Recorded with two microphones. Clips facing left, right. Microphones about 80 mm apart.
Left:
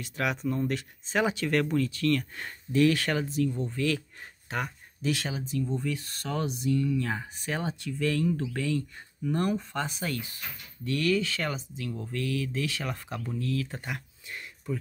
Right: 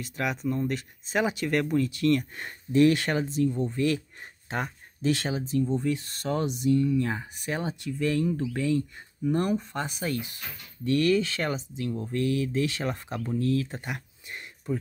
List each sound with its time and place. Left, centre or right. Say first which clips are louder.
0.0 s speech: even; centre
10.9 s speech: right 4 dB; right
13.4 s speech: right 5 dB; right
13.7 s a sound: right 1 dB; centre